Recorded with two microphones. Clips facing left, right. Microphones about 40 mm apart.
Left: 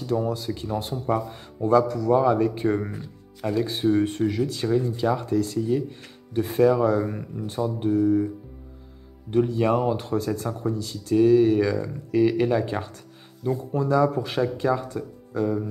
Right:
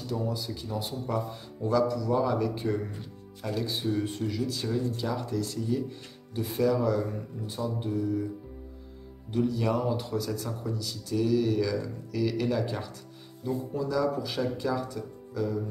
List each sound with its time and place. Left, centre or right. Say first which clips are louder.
0.0 s speech: left 7 dB; left
9.3 s speech: left 6 dB; left